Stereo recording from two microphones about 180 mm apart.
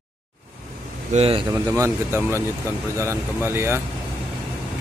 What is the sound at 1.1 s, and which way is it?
Speech, 30° right (ahead or behind).